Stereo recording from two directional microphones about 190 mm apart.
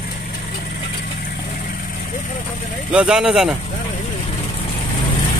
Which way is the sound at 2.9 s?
5° right (ahead or behind).